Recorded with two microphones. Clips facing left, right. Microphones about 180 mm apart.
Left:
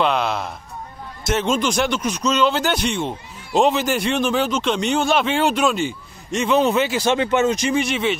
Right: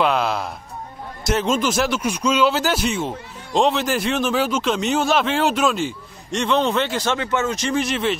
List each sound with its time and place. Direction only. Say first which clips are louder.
0.0 s speech: even; centre (ahead or behind)
7.1 s speech: left 4 dB; 20° left (ahead or behind)
7.7 s speech: left 1 dB; centre (ahead or behind)